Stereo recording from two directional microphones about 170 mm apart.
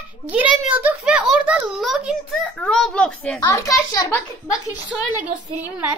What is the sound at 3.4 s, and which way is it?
Speech, 20° left (ahead or behind).